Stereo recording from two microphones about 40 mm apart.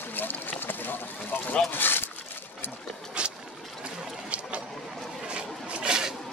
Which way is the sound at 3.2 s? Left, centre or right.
Right.